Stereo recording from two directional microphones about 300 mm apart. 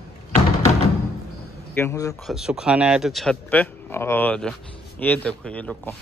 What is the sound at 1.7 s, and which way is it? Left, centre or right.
Speech, centre.